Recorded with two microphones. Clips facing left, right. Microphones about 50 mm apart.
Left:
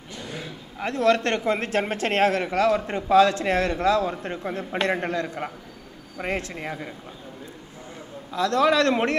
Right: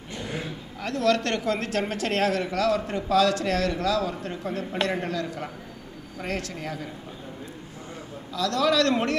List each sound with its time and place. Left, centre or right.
0.7 s a woman's voice: left
8.3 s a woman's voice: left